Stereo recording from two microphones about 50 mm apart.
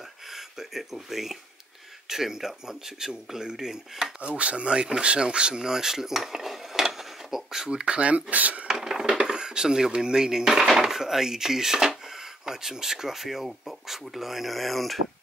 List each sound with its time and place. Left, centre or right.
0.3 s speech: centre
2.0 s dishes: centre
4.2 s speech: right; by 7.8 s centre
7.8 s speech: right
8.6 s cutlery: centre
9.2 s dishes: centre
12.4 s speech: centre